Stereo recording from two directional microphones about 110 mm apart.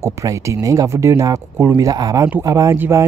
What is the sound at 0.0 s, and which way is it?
Speech, 30° right (ahead or behind).